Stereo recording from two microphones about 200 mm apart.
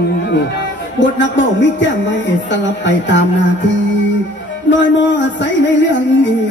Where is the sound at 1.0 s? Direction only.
65° left (ahead or behind).